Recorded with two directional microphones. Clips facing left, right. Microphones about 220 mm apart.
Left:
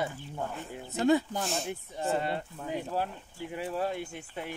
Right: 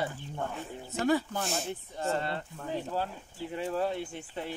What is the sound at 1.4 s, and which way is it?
Speech, centre (ahead or behind).